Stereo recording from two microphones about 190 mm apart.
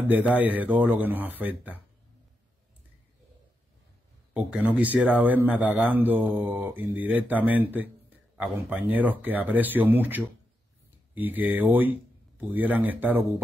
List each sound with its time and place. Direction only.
0.1 s a man's voice: 10° right (ahead or behind)
4.3 s a man's voice: 5° right (ahead or behind)